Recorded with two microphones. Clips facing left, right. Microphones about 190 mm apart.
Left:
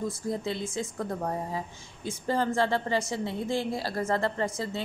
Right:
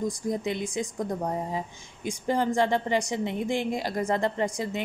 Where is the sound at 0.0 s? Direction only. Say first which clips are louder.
Right 3 dB; 15° right (ahead or behind).